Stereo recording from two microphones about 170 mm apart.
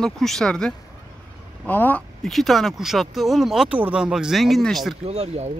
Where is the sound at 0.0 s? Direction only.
Centre (ahead or behind).